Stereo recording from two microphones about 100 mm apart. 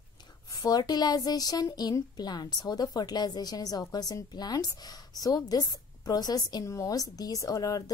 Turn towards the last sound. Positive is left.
turn(degrees=35)  # may be behind; listen again after turning